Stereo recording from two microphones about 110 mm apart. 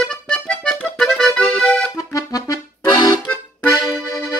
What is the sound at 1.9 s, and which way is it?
Accordion, 30° left (ahead or behind).